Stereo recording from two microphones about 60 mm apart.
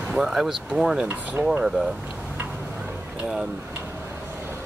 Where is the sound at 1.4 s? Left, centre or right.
Right.